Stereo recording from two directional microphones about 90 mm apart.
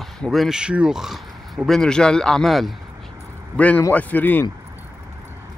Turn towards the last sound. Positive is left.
turn(degrees=20)  # may be behind; listen again after turning